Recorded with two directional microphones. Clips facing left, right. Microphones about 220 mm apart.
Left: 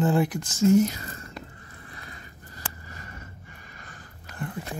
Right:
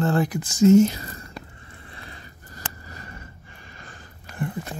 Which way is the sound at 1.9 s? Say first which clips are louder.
Right 3 dB; 30° right (ahead or behind).